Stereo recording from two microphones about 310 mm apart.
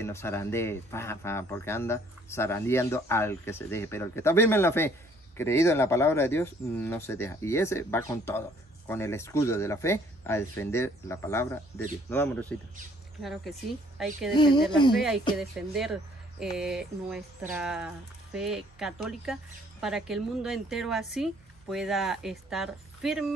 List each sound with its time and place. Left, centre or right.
0.0 s speech: centre
11.7 s speech: centre
12.1 s speech: centre
14.3 s speech: centre
15.0 s speech: centre